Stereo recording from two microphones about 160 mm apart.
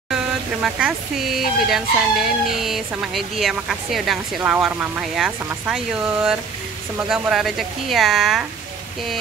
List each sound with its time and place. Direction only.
0.1 s speech: 5° right (ahead or behind)